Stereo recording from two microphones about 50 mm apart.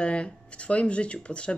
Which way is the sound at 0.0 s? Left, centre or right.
Left.